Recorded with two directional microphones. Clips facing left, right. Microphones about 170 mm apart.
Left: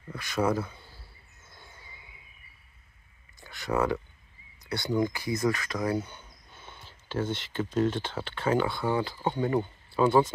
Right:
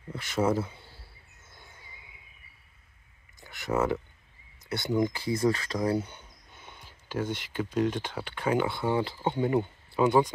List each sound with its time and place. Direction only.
0.1 s speech: 25° right (ahead or behind)
3.3 s speech: 20° right (ahead or behind)
6.0 s speech: 20° right (ahead or behind)